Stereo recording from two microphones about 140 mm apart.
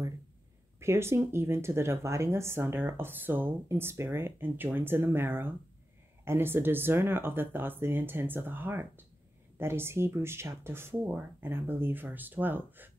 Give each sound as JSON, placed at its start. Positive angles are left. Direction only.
{"t": 0.7, "sound": "speech", "side_deg": -20}